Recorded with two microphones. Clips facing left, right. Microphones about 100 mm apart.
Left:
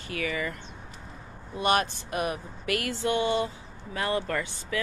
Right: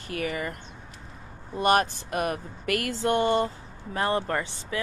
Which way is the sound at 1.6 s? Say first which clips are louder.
Right 3 dB; 45° right (ahead or behind).